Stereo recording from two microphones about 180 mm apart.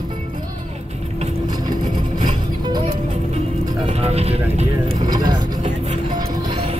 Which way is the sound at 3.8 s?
35° right (ahead or behind).